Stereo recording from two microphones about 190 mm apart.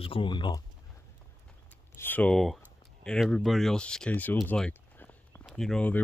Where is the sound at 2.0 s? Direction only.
10° left (ahead or behind).